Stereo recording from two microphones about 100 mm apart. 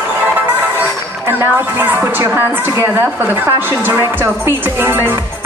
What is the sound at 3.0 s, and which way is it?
Speech, 20° right (ahead or behind).